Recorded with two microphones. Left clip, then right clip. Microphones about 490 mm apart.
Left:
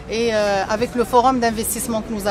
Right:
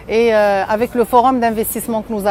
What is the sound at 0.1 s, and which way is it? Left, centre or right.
Speech, right.